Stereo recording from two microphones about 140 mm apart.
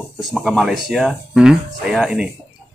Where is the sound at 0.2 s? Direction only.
Centre (ahead or behind).